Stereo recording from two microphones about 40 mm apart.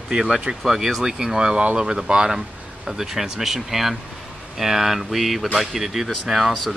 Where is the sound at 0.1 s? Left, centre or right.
Centre.